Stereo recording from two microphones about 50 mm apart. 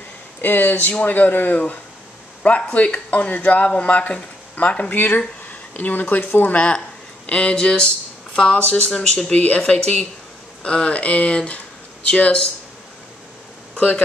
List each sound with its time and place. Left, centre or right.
0.4 s speech: left; by 9.3 s centre
9.3 s speech: left
13.7 s speech: left